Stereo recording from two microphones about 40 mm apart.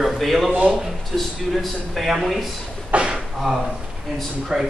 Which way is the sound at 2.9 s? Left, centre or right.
Right.